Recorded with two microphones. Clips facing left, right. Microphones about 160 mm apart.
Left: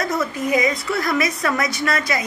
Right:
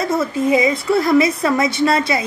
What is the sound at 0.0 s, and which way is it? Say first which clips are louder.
A woman's voice: right 5 dB; 25° right (ahead or behind).